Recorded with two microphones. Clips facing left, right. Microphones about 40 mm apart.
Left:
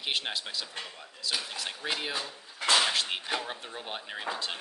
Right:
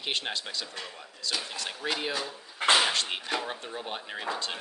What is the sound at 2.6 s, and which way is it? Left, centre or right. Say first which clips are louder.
Speech: right 3 dB; right.